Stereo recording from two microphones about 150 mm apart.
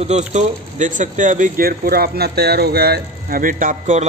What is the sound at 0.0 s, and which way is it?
A man's voice, 50° right (ahead or behind).